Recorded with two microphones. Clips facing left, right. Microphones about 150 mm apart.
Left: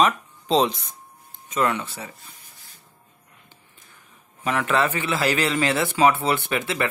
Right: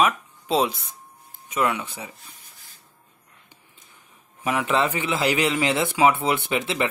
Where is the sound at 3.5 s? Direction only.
15° right (ahead or behind).